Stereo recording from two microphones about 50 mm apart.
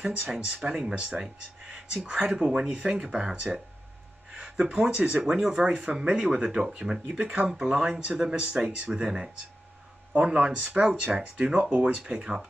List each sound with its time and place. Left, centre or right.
0.6 s speech: centre
2.0 s speech: right
5.2 s speech: centre